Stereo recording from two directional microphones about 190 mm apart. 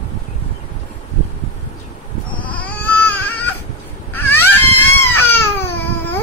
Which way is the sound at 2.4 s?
10° left (ahead or behind).